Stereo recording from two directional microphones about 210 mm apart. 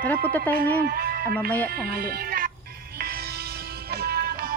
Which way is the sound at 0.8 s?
45° right (ahead or behind).